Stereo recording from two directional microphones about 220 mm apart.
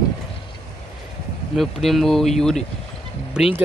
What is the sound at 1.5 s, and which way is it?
Speech, centre (ahead or behind).